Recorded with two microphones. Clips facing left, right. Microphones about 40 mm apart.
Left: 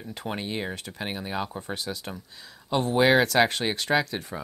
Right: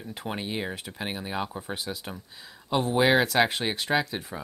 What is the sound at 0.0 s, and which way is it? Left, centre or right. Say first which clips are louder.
Speech: left 1 dB; centre.